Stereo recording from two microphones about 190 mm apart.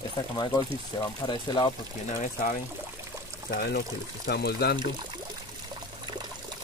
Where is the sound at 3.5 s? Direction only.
55° left (ahead or behind).